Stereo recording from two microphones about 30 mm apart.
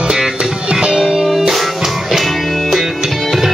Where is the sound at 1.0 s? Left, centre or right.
Centre.